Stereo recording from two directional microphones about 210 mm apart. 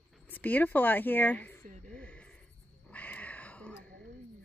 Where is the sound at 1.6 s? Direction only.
40° right (ahead or behind).